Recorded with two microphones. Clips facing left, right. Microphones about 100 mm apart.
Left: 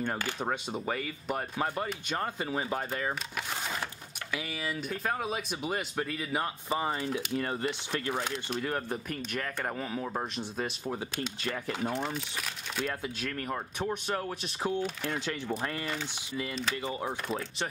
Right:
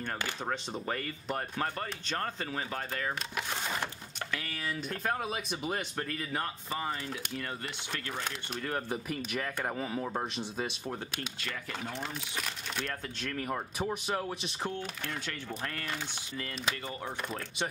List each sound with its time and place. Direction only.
0.4 s speech: 10° left (ahead or behind)
4.3 s speech: 10° left (ahead or behind)
6.7 s speech: 20° left (ahead or behind)
7.3 s speech: 35° left (ahead or behind)
7.9 s speech: 15° left (ahead or behind)
8.6 s speech: centre (ahead or behind)
11.4 s speech: 35° left (ahead or behind)
12.0 s speech: 5° left (ahead or behind)
15.0 s speech: 20° left (ahead or behind)